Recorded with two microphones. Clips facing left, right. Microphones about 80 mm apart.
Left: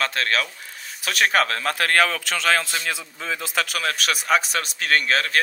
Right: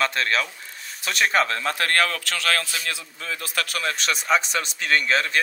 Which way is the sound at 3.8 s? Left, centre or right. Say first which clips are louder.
Right 2 dB; centre.